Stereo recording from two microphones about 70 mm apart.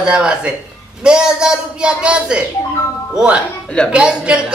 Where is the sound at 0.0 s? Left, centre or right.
Centre.